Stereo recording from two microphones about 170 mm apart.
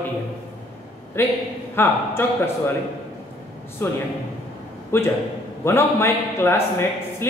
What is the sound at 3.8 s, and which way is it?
A man's voice, 15° left (ahead or behind).